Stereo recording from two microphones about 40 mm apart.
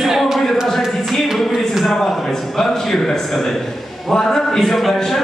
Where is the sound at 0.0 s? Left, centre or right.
Centre.